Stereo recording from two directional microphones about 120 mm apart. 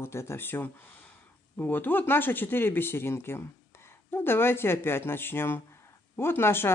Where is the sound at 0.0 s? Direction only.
20° left (ahead or behind).